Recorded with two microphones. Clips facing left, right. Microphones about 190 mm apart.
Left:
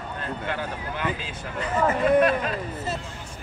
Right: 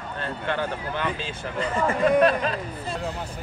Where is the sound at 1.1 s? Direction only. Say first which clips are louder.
Right 3 dB; 25° right (ahead or behind).